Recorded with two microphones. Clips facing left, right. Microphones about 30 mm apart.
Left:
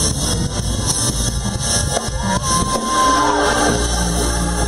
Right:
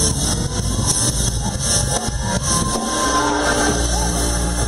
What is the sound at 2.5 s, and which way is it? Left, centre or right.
Music, centre.